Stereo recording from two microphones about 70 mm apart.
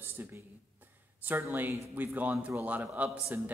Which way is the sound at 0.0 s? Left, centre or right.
Right.